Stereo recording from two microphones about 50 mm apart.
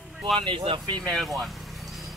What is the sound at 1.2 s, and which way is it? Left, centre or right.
Speech, centre.